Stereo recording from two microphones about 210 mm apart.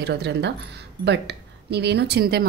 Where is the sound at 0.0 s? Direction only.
50° right (ahead or behind).